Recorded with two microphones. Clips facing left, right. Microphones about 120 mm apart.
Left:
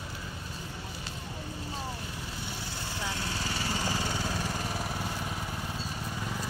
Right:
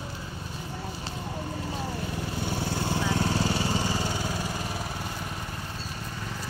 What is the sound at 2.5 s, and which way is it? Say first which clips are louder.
Vehicle: right 10 dB; 55° right (ahead or behind).